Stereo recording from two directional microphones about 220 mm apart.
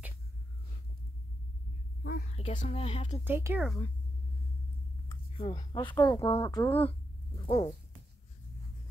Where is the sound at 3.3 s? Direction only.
10° right (ahead or behind).